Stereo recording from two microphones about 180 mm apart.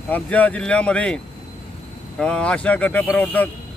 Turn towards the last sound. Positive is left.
turn(degrees=10)  # may be behind; listen again after turning